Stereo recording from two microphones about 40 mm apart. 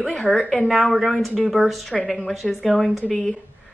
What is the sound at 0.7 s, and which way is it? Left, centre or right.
Speech, centre.